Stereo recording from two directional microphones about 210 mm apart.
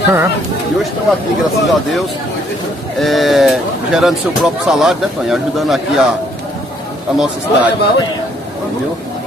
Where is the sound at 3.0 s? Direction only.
Centre (ahead or behind).